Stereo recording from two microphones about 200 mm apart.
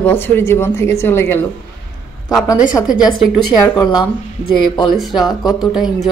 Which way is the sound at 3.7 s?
20° left (ahead or behind).